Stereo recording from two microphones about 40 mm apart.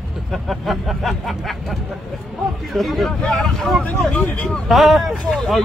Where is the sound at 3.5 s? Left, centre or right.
Centre.